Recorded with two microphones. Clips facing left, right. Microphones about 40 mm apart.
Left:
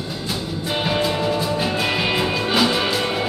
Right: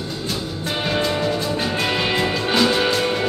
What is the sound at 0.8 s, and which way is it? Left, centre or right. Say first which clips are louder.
Music: even; centre.